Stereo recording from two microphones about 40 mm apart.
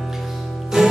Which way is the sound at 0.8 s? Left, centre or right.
Centre.